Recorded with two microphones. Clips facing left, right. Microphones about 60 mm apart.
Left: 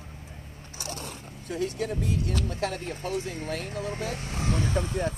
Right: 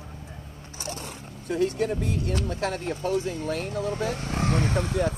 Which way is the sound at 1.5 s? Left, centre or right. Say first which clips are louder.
Right 5 dB; right.